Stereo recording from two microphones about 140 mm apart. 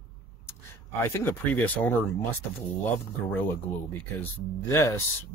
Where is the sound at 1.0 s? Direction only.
15° left (ahead or behind).